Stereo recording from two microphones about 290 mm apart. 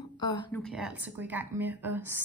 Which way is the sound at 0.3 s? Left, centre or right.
Centre.